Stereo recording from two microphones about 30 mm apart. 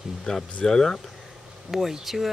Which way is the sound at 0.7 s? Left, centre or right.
Centre.